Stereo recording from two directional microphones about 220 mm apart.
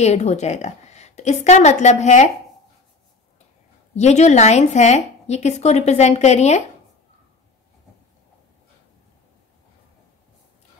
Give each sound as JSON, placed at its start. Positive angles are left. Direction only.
{"t": 0.0, "sound": "a woman's voice", "side_deg": 30}
{"t": 3.9, "sound": "a woman's voice", "side_deg": 30}